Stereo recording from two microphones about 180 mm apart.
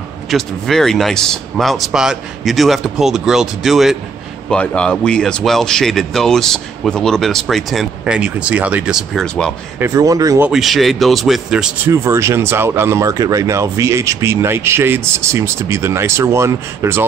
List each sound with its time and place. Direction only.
0.3 s speech: centre (ahead or behind)
9.8 s speech: 15° right (ahead or behind)
10.5 s speech: centre (ahead or behind)
11.9 s speech: 15° right (ahead or behind)